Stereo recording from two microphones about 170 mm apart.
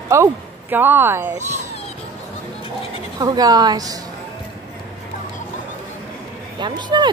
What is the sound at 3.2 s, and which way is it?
Speech, 20° right (ahead or behind).